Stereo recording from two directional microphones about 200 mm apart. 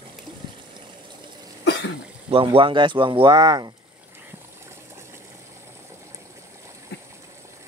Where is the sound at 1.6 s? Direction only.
65° left (ahead or behind).